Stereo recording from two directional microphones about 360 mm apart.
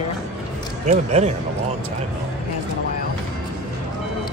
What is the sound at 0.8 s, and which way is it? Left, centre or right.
Speech, centre.